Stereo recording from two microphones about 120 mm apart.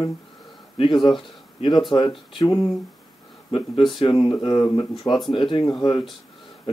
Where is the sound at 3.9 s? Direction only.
45° left (ahead or behind).